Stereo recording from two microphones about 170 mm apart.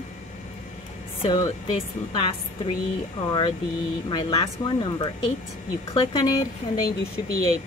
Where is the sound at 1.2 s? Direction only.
25° left (ahead or behind).